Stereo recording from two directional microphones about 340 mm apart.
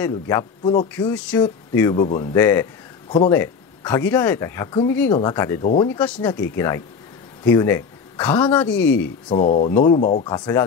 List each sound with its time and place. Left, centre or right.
0.0 s speech: centre
9.3 s speech: centre